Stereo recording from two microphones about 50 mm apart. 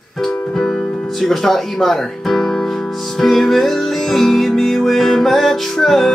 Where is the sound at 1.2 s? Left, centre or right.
Centre.